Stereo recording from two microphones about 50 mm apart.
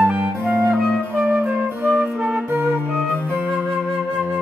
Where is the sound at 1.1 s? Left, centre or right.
Right.